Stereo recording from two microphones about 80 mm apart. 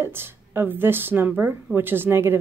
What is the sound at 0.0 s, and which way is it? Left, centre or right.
Speech, right.